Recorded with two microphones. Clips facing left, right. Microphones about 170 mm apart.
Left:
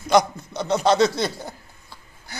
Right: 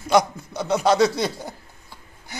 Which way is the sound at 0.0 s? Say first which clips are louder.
Left 1 dB; 10° right (ahead or behind).